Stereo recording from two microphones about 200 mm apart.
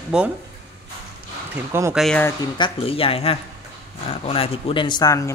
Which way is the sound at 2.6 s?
30° left (ahead or behind).